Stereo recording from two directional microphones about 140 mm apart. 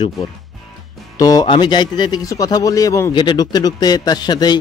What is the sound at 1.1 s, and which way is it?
A man's voice, 25° left (ahead or behind).